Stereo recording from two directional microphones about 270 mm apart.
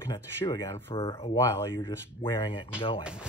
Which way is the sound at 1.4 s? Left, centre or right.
Centre.